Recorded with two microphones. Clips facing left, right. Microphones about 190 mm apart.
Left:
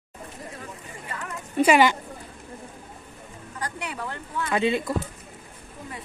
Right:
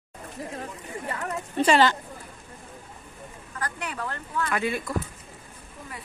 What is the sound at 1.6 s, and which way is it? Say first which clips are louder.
Speech: left 2 dB; 10° left (ahead or behind).